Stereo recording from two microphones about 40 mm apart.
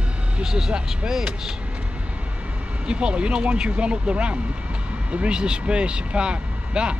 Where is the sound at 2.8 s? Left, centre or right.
Right.